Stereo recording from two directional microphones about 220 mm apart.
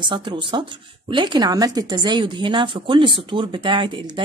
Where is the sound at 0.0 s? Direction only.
20° right (ahead or behind).